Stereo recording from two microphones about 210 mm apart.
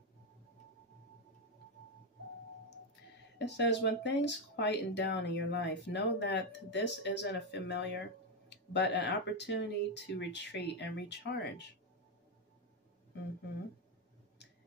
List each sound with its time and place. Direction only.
3.3 s speech: 55° left (ahead or behind)